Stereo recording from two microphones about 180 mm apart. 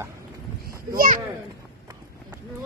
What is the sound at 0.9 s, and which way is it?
Speech, 50° right (ahead or behind).